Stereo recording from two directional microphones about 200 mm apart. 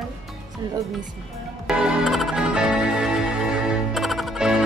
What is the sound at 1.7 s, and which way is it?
Music, 5° right (ahead or behind).